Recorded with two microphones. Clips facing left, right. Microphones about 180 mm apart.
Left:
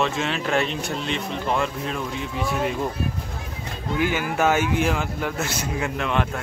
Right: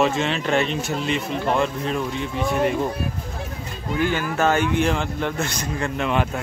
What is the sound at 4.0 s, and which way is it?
Speech, 10° left (ahead or behind).